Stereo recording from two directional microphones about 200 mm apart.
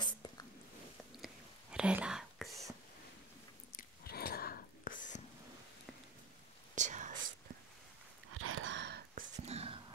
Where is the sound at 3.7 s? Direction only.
50° left (ahead or behind).